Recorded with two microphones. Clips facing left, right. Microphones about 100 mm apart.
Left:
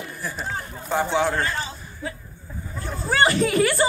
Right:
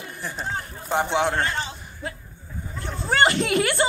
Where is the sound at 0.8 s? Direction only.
20° right (ahead or behind).